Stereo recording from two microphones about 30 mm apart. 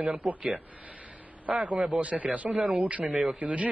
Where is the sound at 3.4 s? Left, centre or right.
Right.